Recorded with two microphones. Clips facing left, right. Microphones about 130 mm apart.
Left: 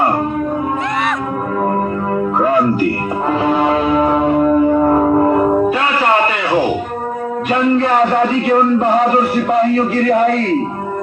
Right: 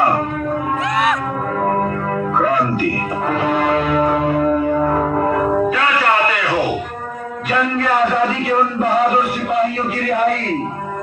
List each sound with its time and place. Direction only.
3.5 s church bell: 25° left (ahead or behind)